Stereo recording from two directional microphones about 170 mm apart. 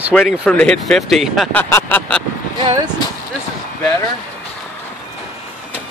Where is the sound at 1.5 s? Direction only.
10° left (ahead or behind).